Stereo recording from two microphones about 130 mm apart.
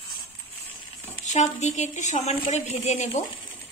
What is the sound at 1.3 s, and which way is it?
A woman's voice, 60° left (ahead or behind).